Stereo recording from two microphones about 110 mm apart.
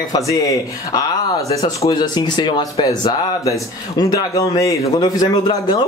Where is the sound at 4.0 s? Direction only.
35° left (ahead or behind).